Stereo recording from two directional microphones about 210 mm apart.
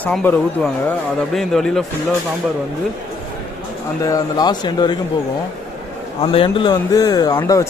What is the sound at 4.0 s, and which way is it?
Speech, 15° left (ahead or behind).